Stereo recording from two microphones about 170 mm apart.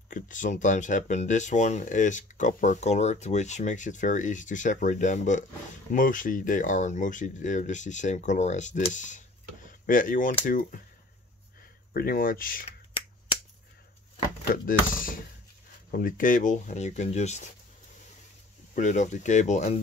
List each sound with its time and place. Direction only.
0.1 s speech: 50° left (ahead or behind)
11.9 s speech: 60° left (ahead or behind)
14.5 s speech: 55° left (ahead or behind)
18.8 s speech: 45° left (ahead or behind)